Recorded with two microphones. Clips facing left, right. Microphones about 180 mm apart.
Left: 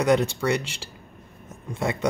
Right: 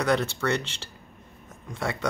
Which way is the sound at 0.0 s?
15° left (ahead or behind).